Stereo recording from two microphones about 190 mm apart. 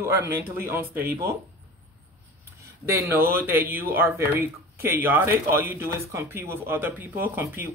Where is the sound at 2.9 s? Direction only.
10° right (ahead or behind).